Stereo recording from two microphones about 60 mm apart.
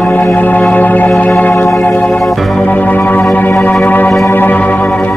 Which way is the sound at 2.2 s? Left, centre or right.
Centre.